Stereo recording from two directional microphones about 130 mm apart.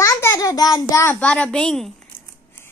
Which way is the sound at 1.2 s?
10° left (ahead or behind).